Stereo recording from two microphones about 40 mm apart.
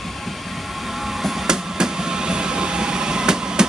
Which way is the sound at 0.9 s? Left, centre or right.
Centre.